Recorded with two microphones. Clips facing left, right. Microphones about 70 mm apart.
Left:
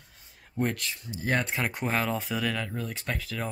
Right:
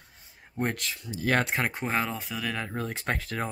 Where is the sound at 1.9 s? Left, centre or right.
Centre.